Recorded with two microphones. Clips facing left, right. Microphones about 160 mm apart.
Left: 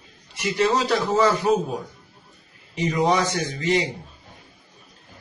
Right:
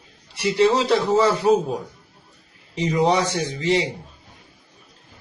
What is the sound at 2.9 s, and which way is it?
Speech, 30° right (ahead or behind).